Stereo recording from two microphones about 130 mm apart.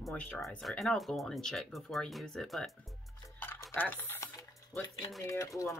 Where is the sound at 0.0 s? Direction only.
10° left (ahead or behind).